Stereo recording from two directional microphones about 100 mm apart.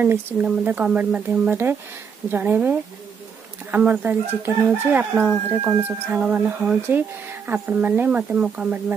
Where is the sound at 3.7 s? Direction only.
15° right (ahead or behind).